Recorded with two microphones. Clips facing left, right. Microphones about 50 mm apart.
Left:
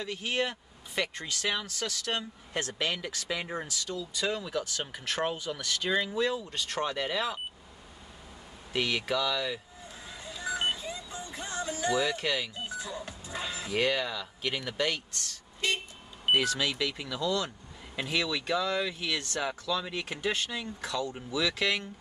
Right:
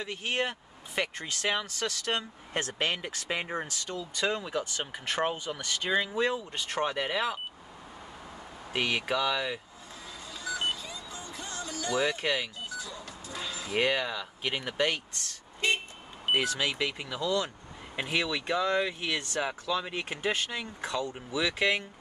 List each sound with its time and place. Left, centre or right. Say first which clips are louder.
0.0 s speech: even; right
6.1 s speech: right 1 dB; right
8.7 s speech: even; right
10.2 s music: left 1 dB; left
11.9 s speech: right 2 dB; right
12.5 s music: left 2 dB; left
13.7 s speech: right 1 dB; right